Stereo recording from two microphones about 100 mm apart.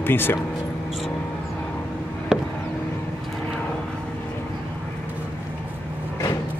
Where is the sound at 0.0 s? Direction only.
20° left (ahead or behind).